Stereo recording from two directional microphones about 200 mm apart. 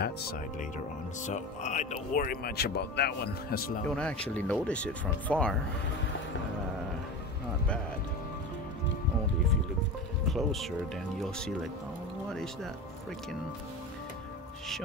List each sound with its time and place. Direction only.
1.2 s speech: 35° left (ahead or behind)
3.9 s speech: 5° left (ahead or behind)
10.2 s speech: centre (ahead or behind)